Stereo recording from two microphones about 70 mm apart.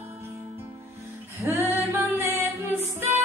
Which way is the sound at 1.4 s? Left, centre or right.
Right.